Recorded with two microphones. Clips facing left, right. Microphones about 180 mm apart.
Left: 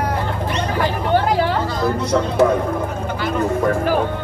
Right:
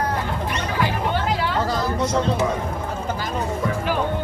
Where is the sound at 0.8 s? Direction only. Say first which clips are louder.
Left 5 dB; 45° left (ahead or behind).